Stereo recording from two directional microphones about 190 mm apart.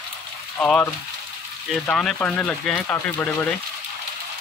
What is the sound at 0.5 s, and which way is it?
Speech, 10° left (ahead or behind).